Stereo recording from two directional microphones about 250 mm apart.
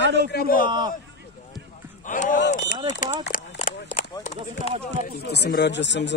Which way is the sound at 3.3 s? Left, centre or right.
Left.